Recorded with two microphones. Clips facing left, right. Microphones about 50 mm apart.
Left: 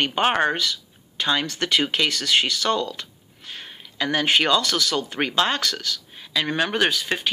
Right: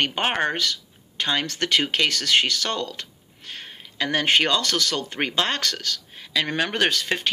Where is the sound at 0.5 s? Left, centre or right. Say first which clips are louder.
Even; right.